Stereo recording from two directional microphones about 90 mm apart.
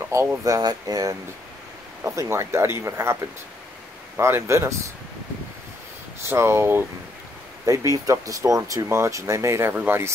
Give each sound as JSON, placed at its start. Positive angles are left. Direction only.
{"t": 0.1, "sound": "speech", "side_deg": -30}
{"t": 0.6, "sound": "speech", "side_deg": -45}
{"t": 2.0, "sound": "speech", "side_deg": -30}
{"t": 4.2, "sound": "speech", "side_deg": -30}
{"t": 6.2, "sound": "speech", "side_deg": -30}